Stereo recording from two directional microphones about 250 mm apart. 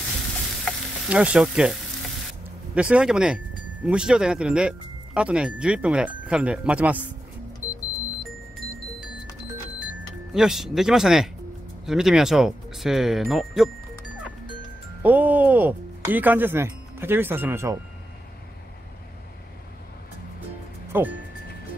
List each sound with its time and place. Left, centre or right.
0.7 s stir: centre
2.7 s speech: centre
10.3 s speech: centre
15.0 s speech: centre
20.9 s speech: centre